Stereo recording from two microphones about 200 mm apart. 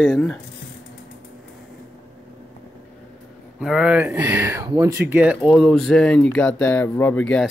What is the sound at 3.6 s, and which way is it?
Speech, centre (ahead or behind).